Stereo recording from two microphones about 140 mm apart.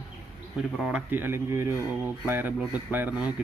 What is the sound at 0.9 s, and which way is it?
Speech, 15° right (ahead or behind).